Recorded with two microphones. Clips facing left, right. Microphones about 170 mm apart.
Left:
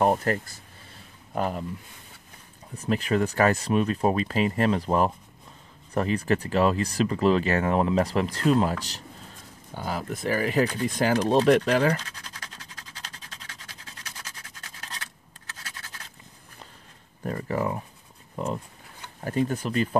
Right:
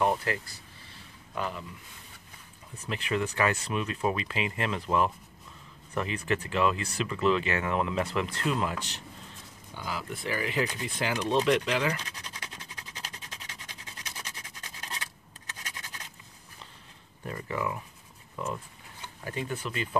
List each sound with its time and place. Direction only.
0.0 s speech: 45° left (ahead or behind)
2.7 s speech: 40° left (ahead or behind)
15.5 s scratch: 15° right (ahead or behind)
17.2 s speech: 40° left (ahead or behind)